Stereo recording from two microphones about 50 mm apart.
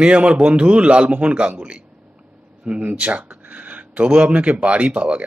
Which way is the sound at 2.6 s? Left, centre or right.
Right.